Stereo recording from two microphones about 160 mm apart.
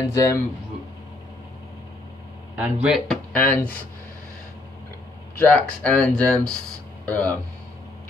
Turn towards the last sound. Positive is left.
turn(degrees=10)  # may be behind; listen again after turning